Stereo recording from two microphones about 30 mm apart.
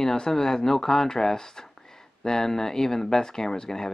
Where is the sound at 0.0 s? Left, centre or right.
Centre.